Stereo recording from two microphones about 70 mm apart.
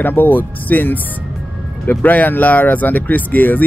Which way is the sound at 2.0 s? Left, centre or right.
Left.